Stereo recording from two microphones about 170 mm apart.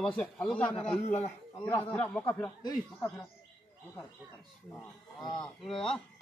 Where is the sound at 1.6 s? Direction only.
10° left (ahead or behind).